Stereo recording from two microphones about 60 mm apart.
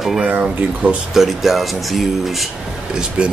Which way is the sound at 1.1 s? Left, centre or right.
Centre.